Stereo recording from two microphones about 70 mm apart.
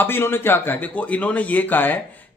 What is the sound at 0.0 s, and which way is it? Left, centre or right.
A man's voice, left.